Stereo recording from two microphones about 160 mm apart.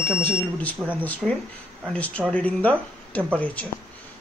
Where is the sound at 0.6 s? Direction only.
10° left (ahead or behind).